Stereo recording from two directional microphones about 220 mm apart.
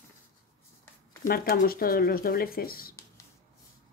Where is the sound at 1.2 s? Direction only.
40° left (ahead or behind).